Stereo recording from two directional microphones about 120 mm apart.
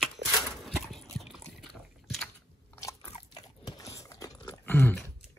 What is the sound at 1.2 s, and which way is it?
Liquid, centre (ahead or behind).